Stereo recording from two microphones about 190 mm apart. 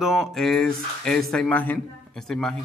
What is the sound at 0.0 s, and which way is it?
Speech, centre (ahead or behind).